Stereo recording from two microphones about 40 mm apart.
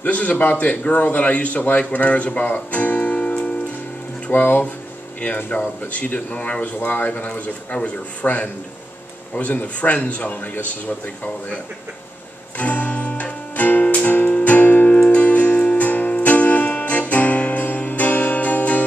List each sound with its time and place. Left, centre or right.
0.0 s a man's voice: left
0.4 s a man's voice: left
2.3 s a man's voice: left
3.2 s music: left
4.3 s speech: left
5.5 s a man's voice: left
6.6 s speech: left
7.1 s a man's voice: left
12.5 s music: left